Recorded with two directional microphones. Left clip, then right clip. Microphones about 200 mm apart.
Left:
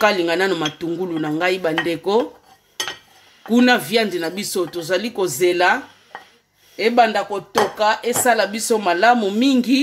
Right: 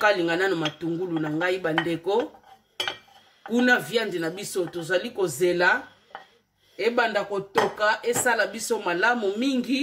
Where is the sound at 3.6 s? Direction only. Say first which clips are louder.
Left 5 dB; 50° left (ahead or behind).